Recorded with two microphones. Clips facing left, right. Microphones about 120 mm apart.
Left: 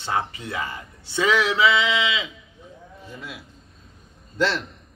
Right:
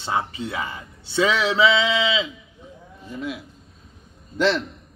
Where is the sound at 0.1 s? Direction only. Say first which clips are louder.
Right 1 dB; 25° right (ahead or behind).